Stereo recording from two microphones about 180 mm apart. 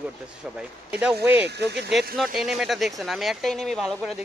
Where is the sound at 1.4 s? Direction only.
70° right (ahead or behind).